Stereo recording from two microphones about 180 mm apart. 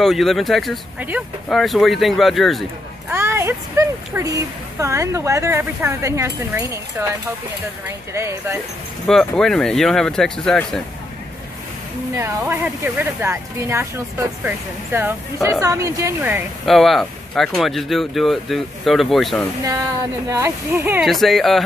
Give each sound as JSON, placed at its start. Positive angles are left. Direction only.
{"t": 0.0, "sound": "speech", "side_deg": 0}
{"t": 3.1, "sound": "speech", "side_deg": -15}
{"t": 8.1, "sound": "speech", "side_deg": -15}
{"t": 9.0, "sound": "speech", "side_deg": 5}
{"t": 12.2, "sound": "speech", "side_deg": -15}
{"t": 16.6, "sound": "speech", "side_deg": 0}
{"t": 19.6, "sound": "speech", "side_deg": -20}
{"t": 21.1, "sound": "speech", "side_deg": 0}